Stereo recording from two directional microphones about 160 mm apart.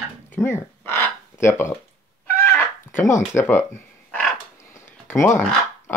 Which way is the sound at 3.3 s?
15° left (ahead or behind).